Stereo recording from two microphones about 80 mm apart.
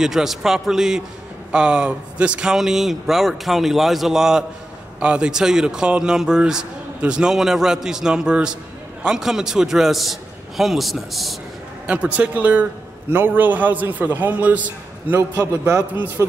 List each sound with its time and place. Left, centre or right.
0.0 s a man's voice: centre
11.8 s a man's voice: centre
16.2 s speech: right